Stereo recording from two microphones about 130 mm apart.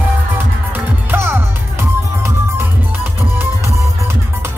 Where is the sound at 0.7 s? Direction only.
15° right (ahead or behind).